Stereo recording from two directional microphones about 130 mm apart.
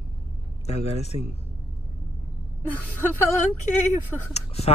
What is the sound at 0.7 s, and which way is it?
Speech, 55° left (ahead or behind).